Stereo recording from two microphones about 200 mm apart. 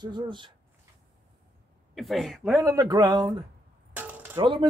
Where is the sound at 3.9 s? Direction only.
10° right (ahead or behind).